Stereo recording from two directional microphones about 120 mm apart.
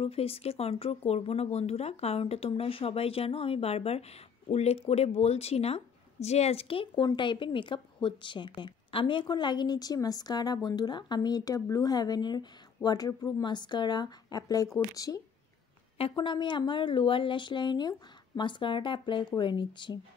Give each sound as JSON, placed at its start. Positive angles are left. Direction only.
{"t": 0.0, "sound": "a woman's voice", "side_deg": 55}
{"t": 16.0, "sound": "a woman's voice", "side_deg": 40}